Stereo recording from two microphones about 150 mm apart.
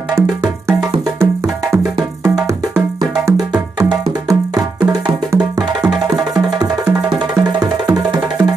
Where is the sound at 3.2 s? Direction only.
25° right (ahead or behind).